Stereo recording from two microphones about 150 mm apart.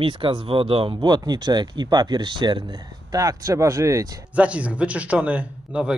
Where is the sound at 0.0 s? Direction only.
35° right (ahead or behind); by 4.1 s 20° right (ahead or behind).